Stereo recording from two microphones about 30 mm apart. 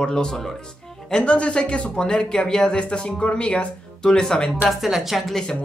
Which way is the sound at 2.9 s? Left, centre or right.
Left.